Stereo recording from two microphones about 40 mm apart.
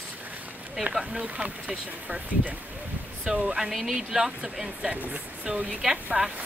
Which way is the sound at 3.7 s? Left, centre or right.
Centre.